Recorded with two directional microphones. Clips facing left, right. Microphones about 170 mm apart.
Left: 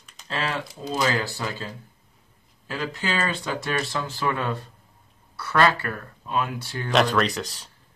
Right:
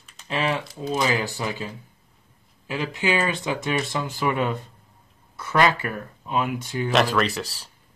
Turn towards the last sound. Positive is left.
turn(degrees=-5)  # may be behind; listen again after turning